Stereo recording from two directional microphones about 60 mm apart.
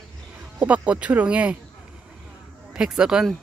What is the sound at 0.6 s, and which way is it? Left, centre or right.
Speech, right.